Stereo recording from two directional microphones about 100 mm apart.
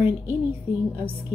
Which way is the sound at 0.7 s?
15° right (ahead or behind).